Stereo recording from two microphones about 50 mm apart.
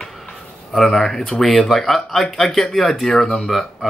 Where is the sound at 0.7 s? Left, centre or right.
Centre.